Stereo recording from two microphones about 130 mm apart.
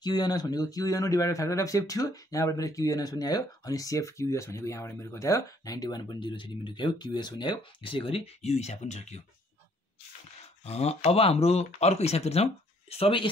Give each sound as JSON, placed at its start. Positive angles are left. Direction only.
{"t": 0.0, "sound": "speech", "side_deg": 35}
{"t": 10.6, "sound": "speech", "side_deg": 55}